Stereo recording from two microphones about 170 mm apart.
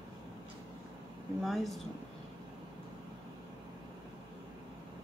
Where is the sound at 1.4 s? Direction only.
Centre (ahead or behind).